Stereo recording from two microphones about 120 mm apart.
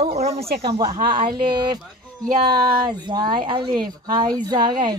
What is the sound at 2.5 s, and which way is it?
Speech, 40° right (ahead or behind).